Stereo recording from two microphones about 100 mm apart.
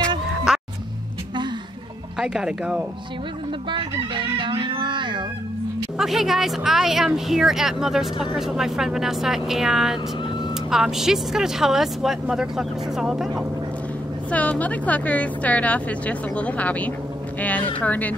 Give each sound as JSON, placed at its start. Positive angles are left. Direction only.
{"t": 0.5, "sound": "music", "side_deg": -5}
{"t": 2.1, "sound": "speech", "side_deg": -10}
{"t": 3.7, "sound": "chicken", "side_deg": -55}
{"t": 5.9, "sound": "speech", "side_deg": -5}
{"t": 14.3, "sound": "speech", "side_deg": 15}